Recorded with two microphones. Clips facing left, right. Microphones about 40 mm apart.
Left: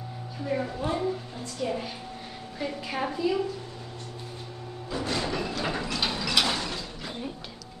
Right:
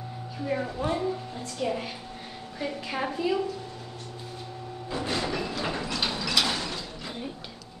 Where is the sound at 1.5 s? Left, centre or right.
Centre.